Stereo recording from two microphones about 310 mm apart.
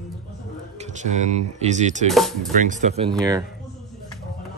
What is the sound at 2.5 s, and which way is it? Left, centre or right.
Speech, right.